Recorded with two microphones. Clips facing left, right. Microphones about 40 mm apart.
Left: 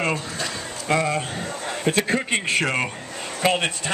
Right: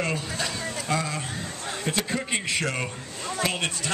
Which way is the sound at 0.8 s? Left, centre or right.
Left.